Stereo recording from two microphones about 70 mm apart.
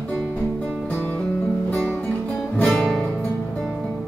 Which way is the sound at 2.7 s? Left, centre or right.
Centre.